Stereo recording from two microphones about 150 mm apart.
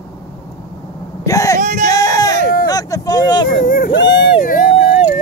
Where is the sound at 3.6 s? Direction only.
70° left (ahead or behind).